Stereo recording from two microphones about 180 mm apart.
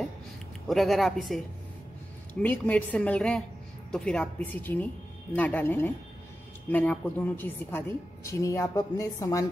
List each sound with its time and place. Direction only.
0.7 s speech: centre (ahead or behind)
2.4 s a woman's voice: 10° left (ahead or behind)